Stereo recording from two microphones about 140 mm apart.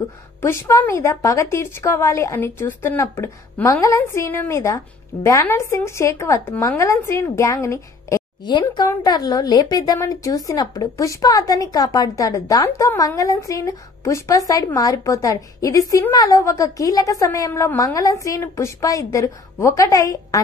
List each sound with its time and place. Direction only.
0.4 s a woman's voice: 20° left (ahead or behind)